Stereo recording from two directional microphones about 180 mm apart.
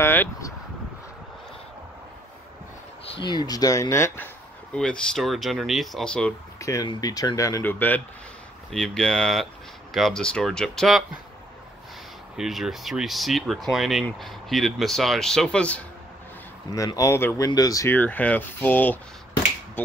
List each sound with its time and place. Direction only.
0.0 s speech: 15° left (ahead or behind)
3.2 s speech: 25° left (ahead or behind)
4.7 s speech: 5° left (ahead or behind)
6.6 s speech: 20° left (ahead or behind); by 11.1 s centre (ahead or behind)
12.4 s speech: centre (ahead or behind)
16.7 s speech: 20° left (ahead or behind)